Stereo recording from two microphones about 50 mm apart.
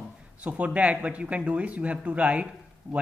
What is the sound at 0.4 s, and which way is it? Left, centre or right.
A man's voice, right.